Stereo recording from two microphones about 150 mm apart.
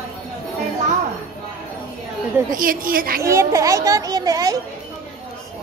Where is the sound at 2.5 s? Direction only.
70° right (ahead or behind).